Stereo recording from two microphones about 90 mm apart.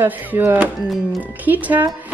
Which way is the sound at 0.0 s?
20° right (ahead or behind).